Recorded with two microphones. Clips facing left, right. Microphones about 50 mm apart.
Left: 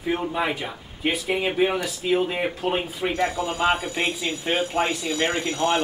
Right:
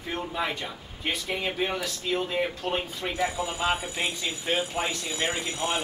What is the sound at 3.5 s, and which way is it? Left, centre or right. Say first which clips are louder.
Speech: left 5 dB; left.